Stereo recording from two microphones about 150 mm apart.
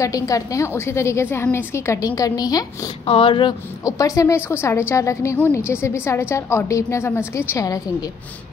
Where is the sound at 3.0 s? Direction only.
40° left (ahead or behind).